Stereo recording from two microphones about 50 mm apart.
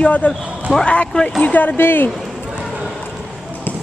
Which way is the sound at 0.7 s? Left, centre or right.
Centre.